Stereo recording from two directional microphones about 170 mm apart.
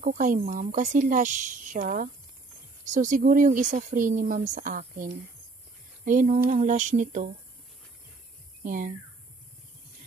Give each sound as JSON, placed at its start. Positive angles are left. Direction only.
{"t": 0.0, "sound": "speech", "side_deg": -55}
{"t": 8.6, "sound": "speech", "side_deg": -50}